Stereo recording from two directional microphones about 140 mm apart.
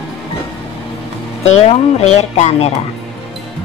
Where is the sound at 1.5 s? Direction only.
50° left (ahead or behind).